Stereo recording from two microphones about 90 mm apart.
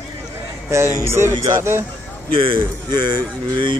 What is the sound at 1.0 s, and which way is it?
Speech, 30° right (ahead or behind).